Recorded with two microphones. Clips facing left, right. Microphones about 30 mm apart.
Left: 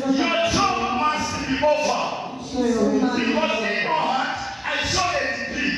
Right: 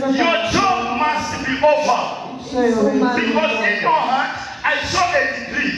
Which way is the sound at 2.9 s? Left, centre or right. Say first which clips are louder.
Right 4 dB; right.